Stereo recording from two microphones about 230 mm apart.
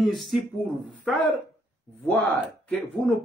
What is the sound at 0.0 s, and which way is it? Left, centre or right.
A man's voice, centre.